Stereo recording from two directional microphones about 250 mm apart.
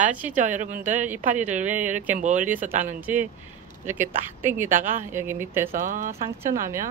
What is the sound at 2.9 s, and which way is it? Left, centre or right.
Speech, centre.